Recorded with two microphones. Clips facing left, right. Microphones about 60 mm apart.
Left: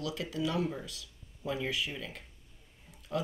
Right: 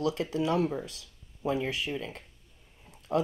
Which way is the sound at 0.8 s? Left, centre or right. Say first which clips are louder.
Right 3 dB; right.